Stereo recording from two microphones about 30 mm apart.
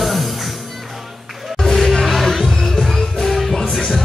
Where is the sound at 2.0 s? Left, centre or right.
Centre.